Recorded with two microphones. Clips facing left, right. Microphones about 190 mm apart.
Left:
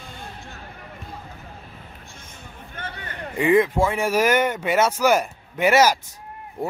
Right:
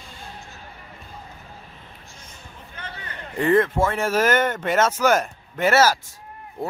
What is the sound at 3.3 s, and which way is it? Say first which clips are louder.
A man's voice: left 1 dB; 10° left (ahead or behind).